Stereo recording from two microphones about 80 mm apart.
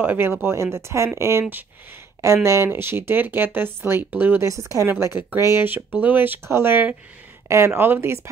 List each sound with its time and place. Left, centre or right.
0.0 s speech: right
4.5 s speech: right